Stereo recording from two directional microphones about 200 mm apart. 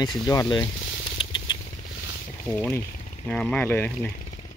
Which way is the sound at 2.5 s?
10° left (ahead or behind).